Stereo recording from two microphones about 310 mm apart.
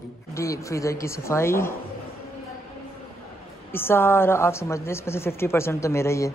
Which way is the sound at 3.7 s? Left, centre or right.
Centre.